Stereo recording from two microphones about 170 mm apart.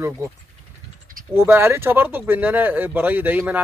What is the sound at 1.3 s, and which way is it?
Speech, 15° right (ahead or behind).